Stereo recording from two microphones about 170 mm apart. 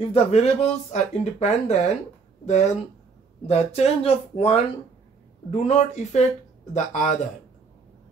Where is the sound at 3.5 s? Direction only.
35° left (ahead or behind).